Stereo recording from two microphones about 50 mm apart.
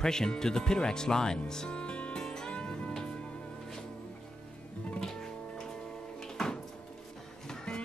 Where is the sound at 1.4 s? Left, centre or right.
Centre.